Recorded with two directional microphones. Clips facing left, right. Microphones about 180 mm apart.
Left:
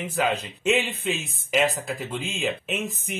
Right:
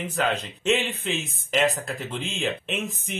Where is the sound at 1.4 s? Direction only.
5° left (ahead or behind).